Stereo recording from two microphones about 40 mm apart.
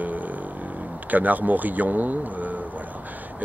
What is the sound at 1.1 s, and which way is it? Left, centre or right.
Speech, right.